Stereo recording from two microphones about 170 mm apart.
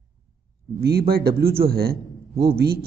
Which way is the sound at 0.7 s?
65° right (ahead or behind).